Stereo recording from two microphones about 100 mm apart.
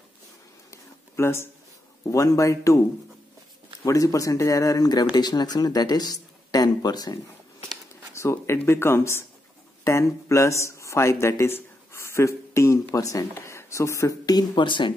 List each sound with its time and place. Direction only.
0.7 s a sound: 25° left (ahead or behind)
2.0 s speech: 35° left (ahead or behind)
3.8 s speech: 35° left (ahead or behind)
8.1 s speech: 30° left (ahead or behind); by 15.0 s 55° left (ahead or behind)